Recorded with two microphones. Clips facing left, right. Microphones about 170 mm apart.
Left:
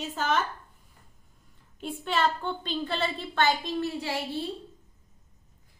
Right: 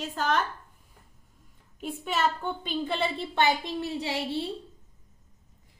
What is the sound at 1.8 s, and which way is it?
A woman's voice, 5° right (ahead or behind).